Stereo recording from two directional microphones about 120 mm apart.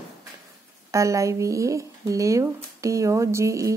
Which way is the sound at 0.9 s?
25° right (ahead or behind).